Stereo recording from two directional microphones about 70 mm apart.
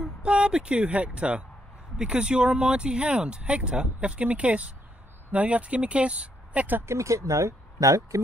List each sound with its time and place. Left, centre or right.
0.0 s speech: centre
6.9 s speech: right